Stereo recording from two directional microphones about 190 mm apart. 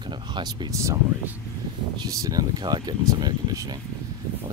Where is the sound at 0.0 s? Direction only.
20° right (ahead or behind).